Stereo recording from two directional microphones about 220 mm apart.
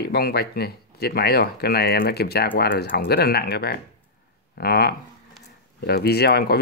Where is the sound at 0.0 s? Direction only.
45° left (ahead or behind).